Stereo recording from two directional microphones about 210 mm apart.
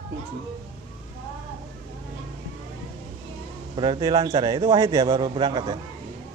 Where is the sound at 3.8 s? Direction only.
20° right (ahead or behind).